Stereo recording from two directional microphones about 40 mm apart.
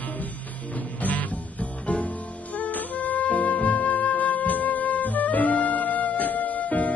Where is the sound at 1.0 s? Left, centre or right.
Left.